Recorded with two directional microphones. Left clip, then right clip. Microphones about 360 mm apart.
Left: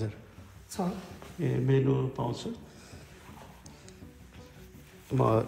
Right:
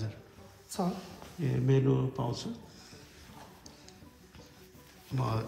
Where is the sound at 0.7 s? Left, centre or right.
Centre.